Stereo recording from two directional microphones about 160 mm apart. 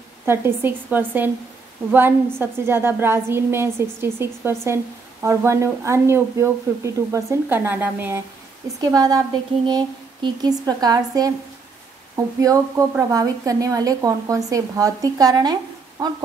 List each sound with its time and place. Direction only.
0.2 s a woman's voice: 15° right (ahead or behind)
8.9 s a woman's voice: 25° right (ahead or behind)
12.4 s a woman's voice: 20° right (ahead or behind)